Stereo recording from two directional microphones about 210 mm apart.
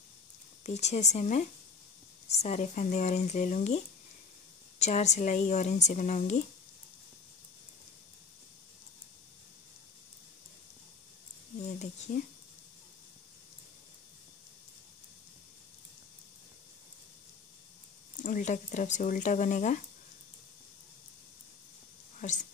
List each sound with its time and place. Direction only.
0.7 s speech: 30° left (ahead or behind)
12.1 s speech: 40° left (ahead or behind)
18.1 s speech: 35° left (ahead or behind)
22.2 s speech: 35° left (ahead or behind)